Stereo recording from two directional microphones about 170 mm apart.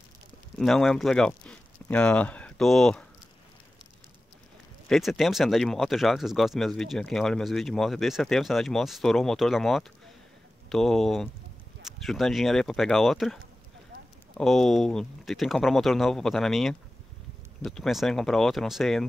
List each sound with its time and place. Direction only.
0.6 s speech: centre (ahead or behind)
4.8 s speech: centre (ahead or behind)